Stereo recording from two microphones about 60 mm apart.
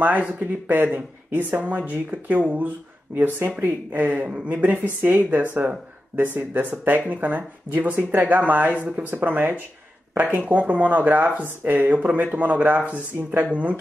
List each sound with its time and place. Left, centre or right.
0.0 s speech: right